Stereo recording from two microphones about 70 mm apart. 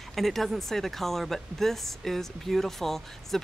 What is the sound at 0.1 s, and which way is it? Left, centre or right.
Speech, centre.